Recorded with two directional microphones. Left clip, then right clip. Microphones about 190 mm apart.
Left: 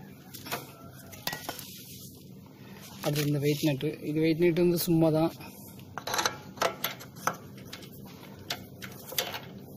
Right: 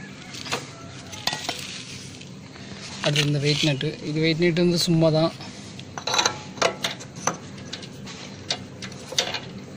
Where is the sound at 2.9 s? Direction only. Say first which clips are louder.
Right 7 dB; 40° left (ahead or behind).